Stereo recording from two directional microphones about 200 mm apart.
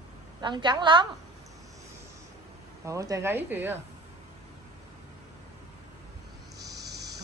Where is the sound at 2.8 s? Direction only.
15° right (ahead or behind).